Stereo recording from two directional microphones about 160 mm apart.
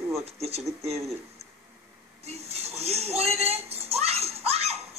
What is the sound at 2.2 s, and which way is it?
Speech, 40° right (ahead or behind).